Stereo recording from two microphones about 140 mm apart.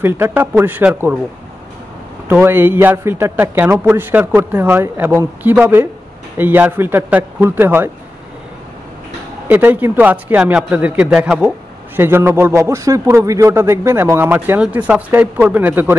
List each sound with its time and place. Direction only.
0.0 s a man's voice: 15° right (ahead or behind)
2.2 s a man's voice: 15° right (ahead or behind)
9.5 s a man's voice: 15° right (ahead or behind)
12.0 s a man's voice: 15° right (ahead or behind)